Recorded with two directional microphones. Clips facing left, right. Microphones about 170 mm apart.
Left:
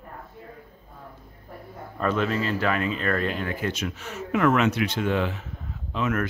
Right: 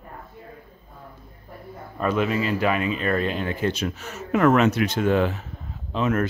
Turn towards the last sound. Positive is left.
turn(degrees=-30)  # may be behind; listen again after turning